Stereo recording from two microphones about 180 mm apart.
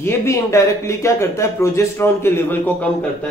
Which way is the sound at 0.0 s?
15° left (ahead or behind).